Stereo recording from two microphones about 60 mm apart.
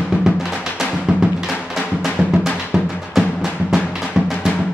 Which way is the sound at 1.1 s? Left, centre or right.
Centre.